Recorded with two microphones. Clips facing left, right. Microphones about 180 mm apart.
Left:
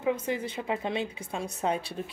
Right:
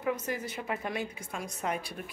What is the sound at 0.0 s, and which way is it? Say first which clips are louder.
Speech: left 4 dB; 25° left (ahead or behind).